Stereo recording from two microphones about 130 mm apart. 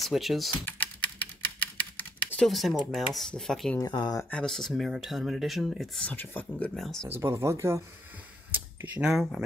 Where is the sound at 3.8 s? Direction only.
35° left (ahead or behind).